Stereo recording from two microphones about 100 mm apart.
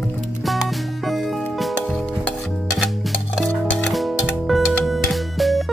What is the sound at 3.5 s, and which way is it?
Music, centre (ahead or behind).